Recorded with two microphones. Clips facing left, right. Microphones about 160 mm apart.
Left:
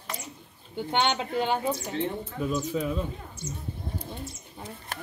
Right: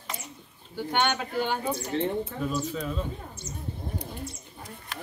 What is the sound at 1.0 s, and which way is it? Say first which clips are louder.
Speech: left 1 dB; 25° left (ahead or behind).